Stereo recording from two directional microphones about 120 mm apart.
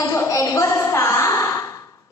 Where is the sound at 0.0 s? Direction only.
25° left (ahead or behind).